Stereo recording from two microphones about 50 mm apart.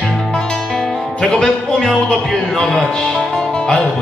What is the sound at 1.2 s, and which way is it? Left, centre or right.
Music, centre.